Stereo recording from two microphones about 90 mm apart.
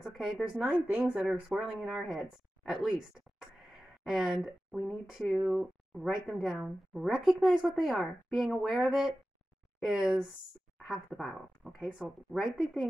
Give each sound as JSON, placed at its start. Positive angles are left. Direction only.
{"t": 0.0, "sound": "speech", "side_deg": -5}
{"t": 4.0, "sound": "speech", "side_deg": -5}